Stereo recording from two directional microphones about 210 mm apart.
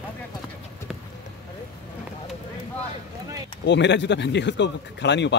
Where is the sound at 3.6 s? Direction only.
55° left (ahead or behind).